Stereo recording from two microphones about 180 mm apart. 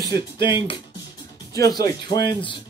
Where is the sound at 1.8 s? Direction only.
20° left (ahead or behind).